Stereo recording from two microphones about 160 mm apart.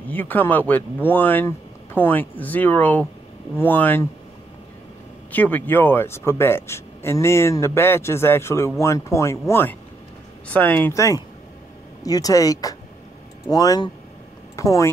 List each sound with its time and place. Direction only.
0.1 s speech: 10° left (ahead or behind)
5.3 s speech: 10° left (ahead or behind)